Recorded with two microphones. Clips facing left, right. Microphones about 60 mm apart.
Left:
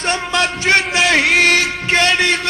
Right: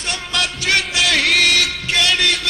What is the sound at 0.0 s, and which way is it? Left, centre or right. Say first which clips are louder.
Music: left 5 dB; left.